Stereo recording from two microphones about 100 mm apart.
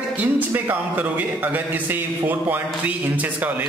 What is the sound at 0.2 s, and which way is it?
Speech, 20° right (ahead or behind).